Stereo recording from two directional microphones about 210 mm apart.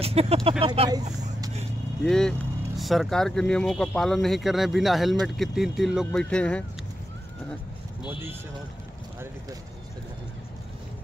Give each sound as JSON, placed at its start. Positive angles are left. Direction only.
{"t": 0.0, "sound": "speech", "side_deg": -30}
{"t": 2.0, "sound": "speech", "side_deg": 5}